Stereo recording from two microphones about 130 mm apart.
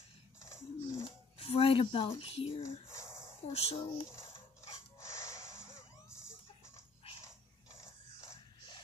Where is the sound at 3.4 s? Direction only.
50° left (ahead or behind).